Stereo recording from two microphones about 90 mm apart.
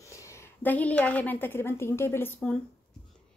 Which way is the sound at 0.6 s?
15° left (ahead or behind).